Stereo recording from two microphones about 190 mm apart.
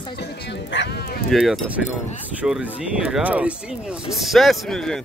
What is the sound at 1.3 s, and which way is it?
Speech, 5° right (ahead or behind).